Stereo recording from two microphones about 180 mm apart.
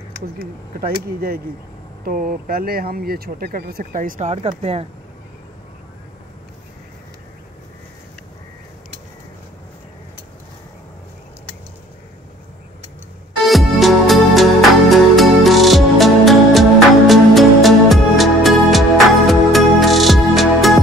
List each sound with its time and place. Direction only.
0.4 s speech: 55° right (ahead or behind); by 4.8 s 35° right (ahead or behind)
13.5 s music: centre (ahead or behind)